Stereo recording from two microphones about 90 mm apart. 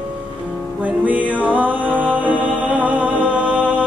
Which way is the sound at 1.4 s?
15° right (ahead or behind).